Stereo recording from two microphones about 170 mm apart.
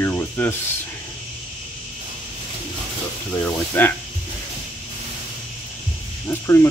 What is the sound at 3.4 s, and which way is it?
Speech, 10° left (ahead or behind).